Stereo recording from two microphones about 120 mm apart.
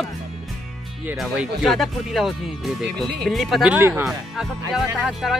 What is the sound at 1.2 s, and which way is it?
Speech, centre (ahead or behind).